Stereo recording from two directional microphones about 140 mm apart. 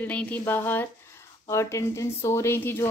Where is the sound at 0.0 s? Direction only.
10° left (ahead or behind).